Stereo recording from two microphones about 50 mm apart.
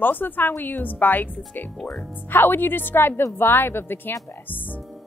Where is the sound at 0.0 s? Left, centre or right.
Left.